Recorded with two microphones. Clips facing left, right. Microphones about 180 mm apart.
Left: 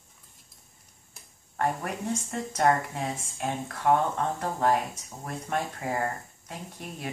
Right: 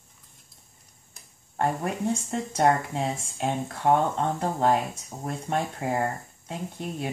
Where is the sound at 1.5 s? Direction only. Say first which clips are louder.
Right 3 dB; 30° right (ahead or behind).